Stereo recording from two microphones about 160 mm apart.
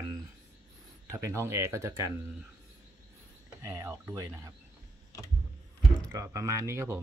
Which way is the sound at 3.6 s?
15° right (ahead or behind).